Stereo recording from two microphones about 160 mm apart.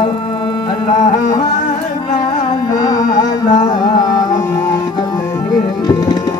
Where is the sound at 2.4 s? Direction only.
25° left (ahead or behind).